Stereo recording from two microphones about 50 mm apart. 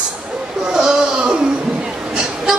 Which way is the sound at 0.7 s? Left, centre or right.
Centre.